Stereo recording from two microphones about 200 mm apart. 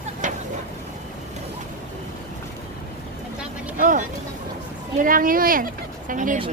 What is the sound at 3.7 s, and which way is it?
Vehicle, 40° right (ahead or behind).